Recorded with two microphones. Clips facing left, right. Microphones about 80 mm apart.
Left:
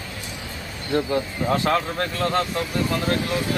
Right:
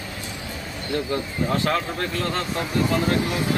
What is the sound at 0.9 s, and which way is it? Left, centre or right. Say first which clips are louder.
Speech: left 3 dB; left.